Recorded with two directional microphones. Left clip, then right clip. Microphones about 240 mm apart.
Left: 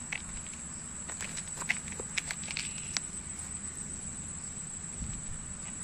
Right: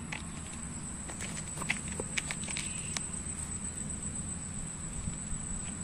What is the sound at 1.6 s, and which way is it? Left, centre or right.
Walk, centre.